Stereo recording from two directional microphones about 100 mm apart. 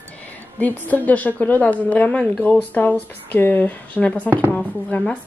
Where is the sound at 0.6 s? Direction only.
15° left (ahead or behind).